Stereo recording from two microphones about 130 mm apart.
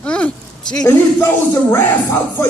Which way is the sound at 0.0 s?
10° left (ahead or behind).